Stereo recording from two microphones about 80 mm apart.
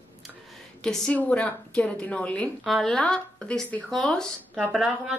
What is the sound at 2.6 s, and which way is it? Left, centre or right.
A woman's voice, centre.